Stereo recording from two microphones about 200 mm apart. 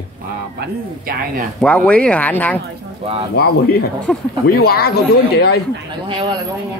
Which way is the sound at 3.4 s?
50° left (ahead or behind).